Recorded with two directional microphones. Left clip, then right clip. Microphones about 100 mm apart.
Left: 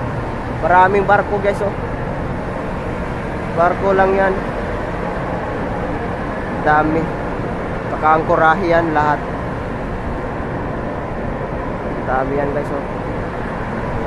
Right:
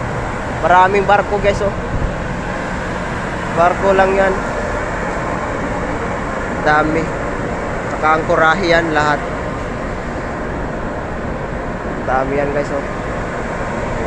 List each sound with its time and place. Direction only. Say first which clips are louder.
0.7 s speech: right 1 dB; 10° left (ahead or behind)
3.6 s speech: right 2 dB; 15° left (ahead or behind)
6.6 s speech: right 1 dB; 15° left (ahead or behind)
8.0 s speech: even; 20° left (ahead or behind)